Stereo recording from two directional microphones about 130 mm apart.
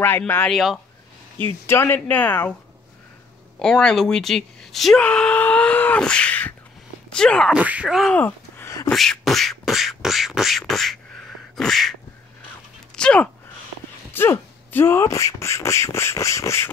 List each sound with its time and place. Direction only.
0.5 s speech: centre (ahead or behind)
1.7 s speech: 20° left (ahead or behind)
3.5 s speech: 5° left (ahead or behind)
7.5 s speech: 10° right (ahead or behind)
8.1 s a sound: 15° left (ahead or behind)
8.9 s beatboxing: centre (ahead or behind)
12.9 s speech: 10° left (ahead or behind)